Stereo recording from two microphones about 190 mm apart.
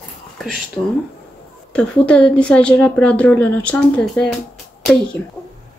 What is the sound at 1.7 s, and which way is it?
A woman's voice, 5° left (ahead or behind).